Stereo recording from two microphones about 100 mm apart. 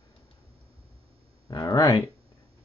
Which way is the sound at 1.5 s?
40° left (ahead or behind).